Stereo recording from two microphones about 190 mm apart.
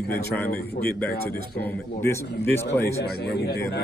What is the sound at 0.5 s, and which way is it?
Speech, 55° left (ahead or behind).